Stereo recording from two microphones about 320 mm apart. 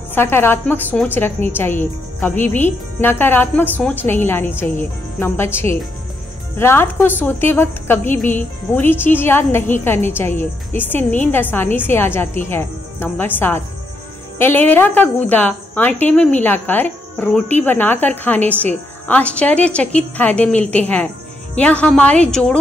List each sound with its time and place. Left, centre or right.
0.1 s a woman's voice: centre